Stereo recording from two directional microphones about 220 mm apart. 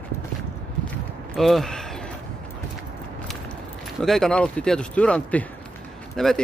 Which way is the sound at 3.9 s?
Centre (ahead or behind).